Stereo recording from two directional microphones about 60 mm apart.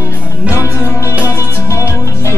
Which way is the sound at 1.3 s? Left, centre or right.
Left.